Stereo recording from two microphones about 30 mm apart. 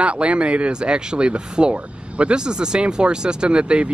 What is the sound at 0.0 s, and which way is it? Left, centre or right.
Speech, right.